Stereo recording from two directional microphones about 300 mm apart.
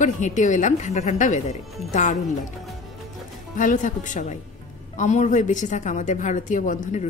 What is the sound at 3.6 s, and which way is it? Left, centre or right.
A woman's voice, left.